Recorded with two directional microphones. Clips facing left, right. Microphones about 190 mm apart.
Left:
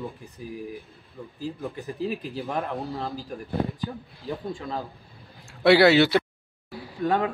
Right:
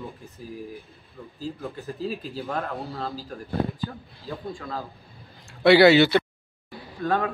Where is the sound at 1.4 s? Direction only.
15° left (ahead or behind).